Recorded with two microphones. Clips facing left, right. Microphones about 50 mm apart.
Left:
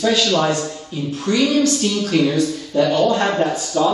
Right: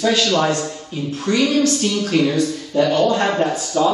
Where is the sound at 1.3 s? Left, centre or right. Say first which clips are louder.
Even; centre.